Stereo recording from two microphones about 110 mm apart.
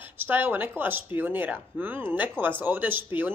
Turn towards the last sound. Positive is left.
turn(degrees=-20)  # may be behind; listen again after turning